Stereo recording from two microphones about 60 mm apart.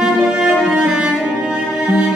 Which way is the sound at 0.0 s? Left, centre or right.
Centre.